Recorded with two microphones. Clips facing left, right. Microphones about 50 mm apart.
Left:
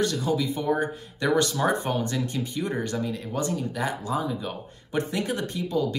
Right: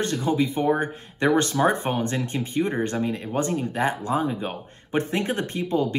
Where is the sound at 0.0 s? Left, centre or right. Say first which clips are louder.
Right 2 dB; right.